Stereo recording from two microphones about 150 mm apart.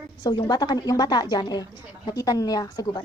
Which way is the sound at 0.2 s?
30° left (ahead or behind).